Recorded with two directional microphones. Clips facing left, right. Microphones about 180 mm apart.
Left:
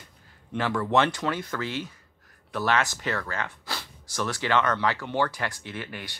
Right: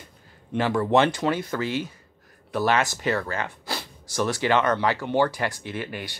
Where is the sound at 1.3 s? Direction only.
10° right (ahead or behind).